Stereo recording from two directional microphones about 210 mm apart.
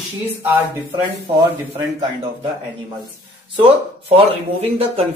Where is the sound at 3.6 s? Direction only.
25° right (ahead or behind).